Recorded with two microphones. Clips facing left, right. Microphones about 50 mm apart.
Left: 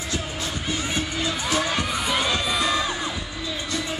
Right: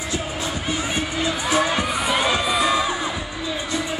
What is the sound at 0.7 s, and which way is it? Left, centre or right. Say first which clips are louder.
Crowd: right 1 dB; centre.